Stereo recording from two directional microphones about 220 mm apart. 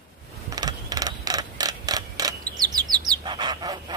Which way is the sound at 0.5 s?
15° right (ahead or behind).